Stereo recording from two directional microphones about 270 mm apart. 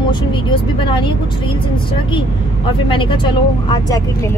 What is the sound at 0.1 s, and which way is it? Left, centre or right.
Speech, centre.